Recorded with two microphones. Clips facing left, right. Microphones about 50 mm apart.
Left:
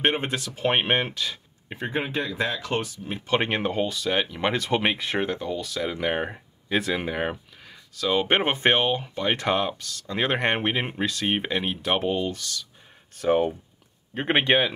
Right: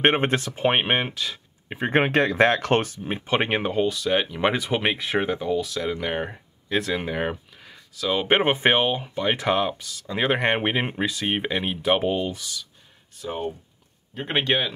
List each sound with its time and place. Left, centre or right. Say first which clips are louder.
0.0 s speech: right 4 dB; right
0.7 s speech: right 1 dB; centre
1.9 s speech: right 8 dB; right
3.1 s speech: even; centre
13.1 s speech: left 9 dB; left
14.1 s speech: left 3 dB; left
14.4 s speech: left 2 dB; centre